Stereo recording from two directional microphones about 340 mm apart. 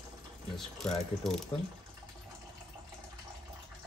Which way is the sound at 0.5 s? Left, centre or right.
Centre.